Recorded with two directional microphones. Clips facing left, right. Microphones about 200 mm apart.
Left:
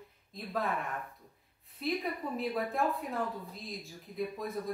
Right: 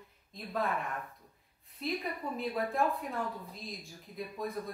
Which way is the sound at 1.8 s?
Centre (ahead or behind).